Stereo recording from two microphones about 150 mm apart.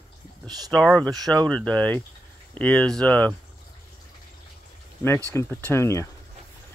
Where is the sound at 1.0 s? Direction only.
25° right (ahead or behind).